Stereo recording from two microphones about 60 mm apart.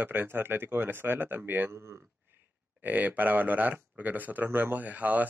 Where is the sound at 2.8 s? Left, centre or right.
Right.